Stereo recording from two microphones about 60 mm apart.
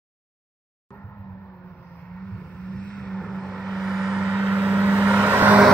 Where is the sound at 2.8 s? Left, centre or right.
Centre.